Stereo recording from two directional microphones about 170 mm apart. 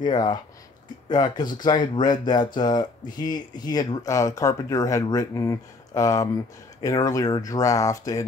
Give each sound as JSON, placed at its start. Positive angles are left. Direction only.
{"t": 0.0, "sound": "speech", "side_deg": 25}